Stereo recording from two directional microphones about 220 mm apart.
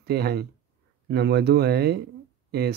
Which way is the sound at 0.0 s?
45° right (ahead or behind).